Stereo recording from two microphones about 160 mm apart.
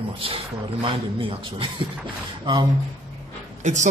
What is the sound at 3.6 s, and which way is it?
Speech, 50° right (ahead or behind).